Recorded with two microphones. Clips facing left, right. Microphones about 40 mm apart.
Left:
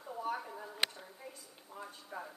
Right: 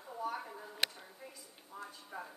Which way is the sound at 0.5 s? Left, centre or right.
Centre.